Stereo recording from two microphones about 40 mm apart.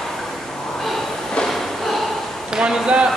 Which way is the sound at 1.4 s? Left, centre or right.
Centre.